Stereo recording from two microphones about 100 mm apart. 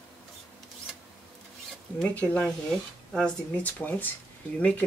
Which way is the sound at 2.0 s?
15° left (ahead or behind).